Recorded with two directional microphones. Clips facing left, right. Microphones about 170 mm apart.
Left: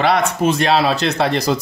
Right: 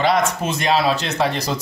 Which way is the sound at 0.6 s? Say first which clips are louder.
Left 3 dB; 65° left (ahead or behind).